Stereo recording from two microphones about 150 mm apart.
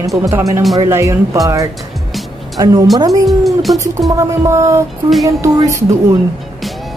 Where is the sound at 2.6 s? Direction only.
20° right (ahead or behind).